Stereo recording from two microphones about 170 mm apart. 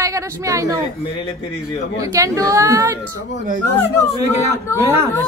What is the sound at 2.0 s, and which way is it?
Speech, 20° right (ahead or behind).